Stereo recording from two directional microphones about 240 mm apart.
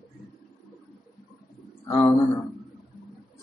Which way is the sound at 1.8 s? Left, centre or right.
Centre.